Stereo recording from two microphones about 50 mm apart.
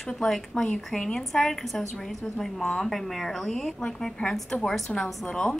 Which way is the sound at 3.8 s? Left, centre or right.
Centre.